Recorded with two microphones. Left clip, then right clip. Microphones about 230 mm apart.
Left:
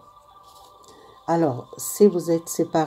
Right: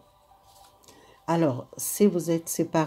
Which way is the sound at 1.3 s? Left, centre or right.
Right.